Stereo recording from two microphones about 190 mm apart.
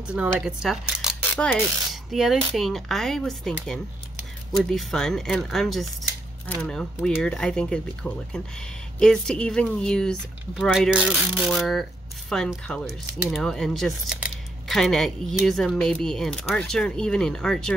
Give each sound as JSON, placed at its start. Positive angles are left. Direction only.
{"t": 0.0, "sound": "speech", "side_deg": -5}
{"t": 1.3, "sound": "speech", "side_deg": 10}